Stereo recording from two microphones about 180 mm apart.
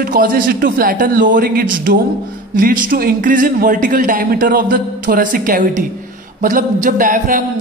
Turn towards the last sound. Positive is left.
turn(degrees=-50)  # may be behind; listen again after turning